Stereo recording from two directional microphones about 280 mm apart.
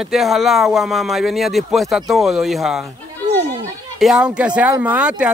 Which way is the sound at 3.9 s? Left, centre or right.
Centre.